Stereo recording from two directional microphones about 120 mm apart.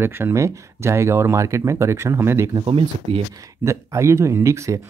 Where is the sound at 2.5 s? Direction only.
45° right (ahead or behind).